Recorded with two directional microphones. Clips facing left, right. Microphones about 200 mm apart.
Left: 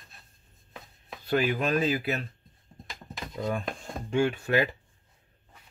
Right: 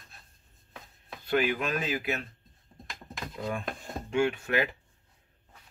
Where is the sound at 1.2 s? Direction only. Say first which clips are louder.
Left 2 dB; 35° left (ahead or behind).